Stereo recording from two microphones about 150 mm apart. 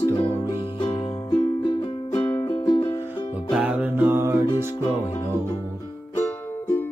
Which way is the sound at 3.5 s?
5° right (ahead or behind).